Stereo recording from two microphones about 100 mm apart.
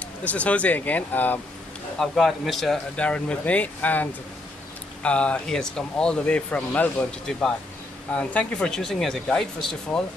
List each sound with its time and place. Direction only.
0.2 s speech: 15° left (ahead or behind)
2.0 s a man's voice: centre (ahead or behind)